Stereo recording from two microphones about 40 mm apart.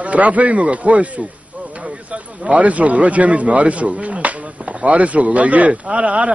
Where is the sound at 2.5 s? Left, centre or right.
Right.